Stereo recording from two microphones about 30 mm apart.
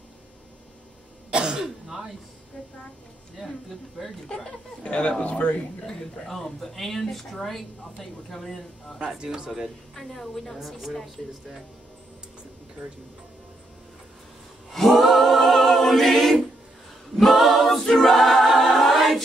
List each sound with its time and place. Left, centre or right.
1.3 s throat clearing: right
1.9 s speech: centre
3.4 s speech: centre
4.3 s speech: left
4.8 s speech: left
6.4 s speech: centre
9.2 s speech: right
9.9 s speech: centre
10.6 s speech: centre
14.7 s a capella: centre
15.9 s choir: centre
17.4 s a capella: centre